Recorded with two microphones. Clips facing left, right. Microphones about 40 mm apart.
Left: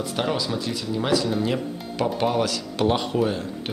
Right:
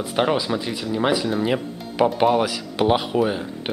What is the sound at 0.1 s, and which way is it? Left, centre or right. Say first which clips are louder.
Speech: right 6 dB; right.